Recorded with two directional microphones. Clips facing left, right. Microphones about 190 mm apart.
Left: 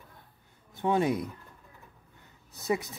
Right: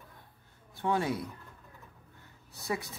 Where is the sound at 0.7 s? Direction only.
20° left (ahead or behind).